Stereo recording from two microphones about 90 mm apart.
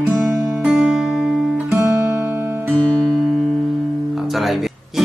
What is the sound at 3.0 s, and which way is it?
Music, centre (ahead or behind).